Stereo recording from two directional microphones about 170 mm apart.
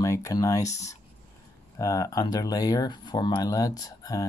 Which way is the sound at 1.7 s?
20° left (ahead or behind).